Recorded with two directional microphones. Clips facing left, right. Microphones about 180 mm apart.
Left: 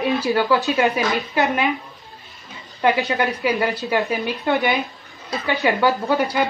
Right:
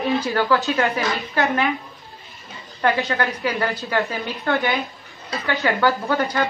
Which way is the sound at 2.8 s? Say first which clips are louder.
Left 2 dB; 15° left (ahead or behind).